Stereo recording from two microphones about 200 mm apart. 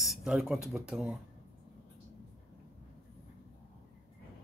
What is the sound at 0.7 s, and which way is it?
Speech, centre (ahead or behind).